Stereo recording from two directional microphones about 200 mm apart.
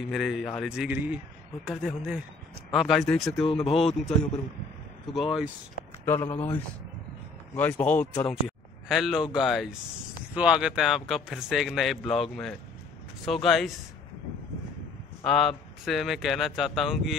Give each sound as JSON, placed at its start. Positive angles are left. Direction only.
{"t": 0.0, "sound": "speech", "side_deg": 0}
{"t": 3.6, "sound": "speech", "side_deg": 30}
{"t": 5.1, "sound": "speech", "side_deg": 0}
{"t": 6.0, "sound": "a man's voice", "side_deg": 10}
{"t": 8.3, "sound": "speech", "side_deg": 0}
{"t": 15.2, "sound": "speech", "side_deg": 0}